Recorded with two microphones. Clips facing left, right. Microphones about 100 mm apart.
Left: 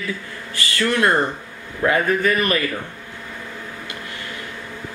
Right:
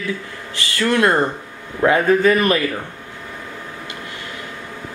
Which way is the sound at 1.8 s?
25° right (ahead or behind).